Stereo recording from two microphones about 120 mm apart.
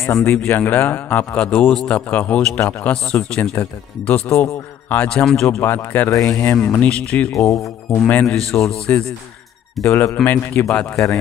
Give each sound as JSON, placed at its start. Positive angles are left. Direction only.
{"t": 0.0, "sound": "a man's voice", "side_deg": 20}
{"t": 6.7, "sound": "speech", "side_deg": 10}
{"t": 9.8, "sound": "a man's voice", "side_deg": 20}